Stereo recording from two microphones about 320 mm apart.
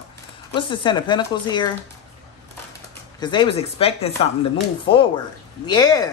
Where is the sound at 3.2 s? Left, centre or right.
Centre.